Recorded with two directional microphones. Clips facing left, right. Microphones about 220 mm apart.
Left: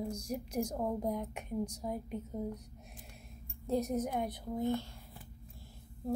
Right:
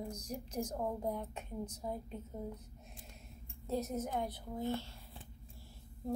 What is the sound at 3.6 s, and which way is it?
A woman's voice, 15° left (ahead or behind).